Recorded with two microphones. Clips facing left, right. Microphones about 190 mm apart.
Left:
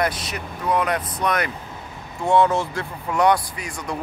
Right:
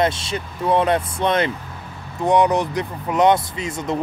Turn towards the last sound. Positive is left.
turn(degrees=-25)  # may be behind; listen again after turning